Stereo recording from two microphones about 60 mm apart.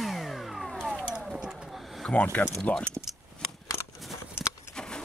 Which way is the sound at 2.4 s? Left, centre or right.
Left.